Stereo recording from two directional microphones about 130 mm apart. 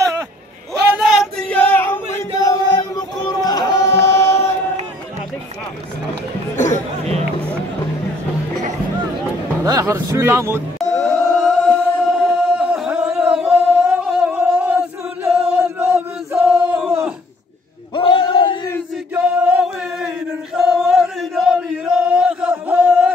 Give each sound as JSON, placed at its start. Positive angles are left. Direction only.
{"t": 0.9, "sound": "a sound", "side_deg": -5}
{"t": 1.5, "sound": "a sound", "side_deg": 10}
{"t": 2.3, "sound": "chant", "side_deg": 25}
{"t": 6.5, "sound": "chatter", "side_deg": 70}
{"t": 9.7, "sound": "speech", "side_deg": -25}
{"t": 10.8, "sound": "chant", "side_deg": 5}
{"t": 12.2, "sound": "singing", "side_deg": 0}
{"t": 17.9, "sound": "a sound", "side_deg": 40}
{"t": 19.1, "sound": "music", "side_deg": -10}
{"t": 20.5, "sound": "male singing", "side_deg": -5}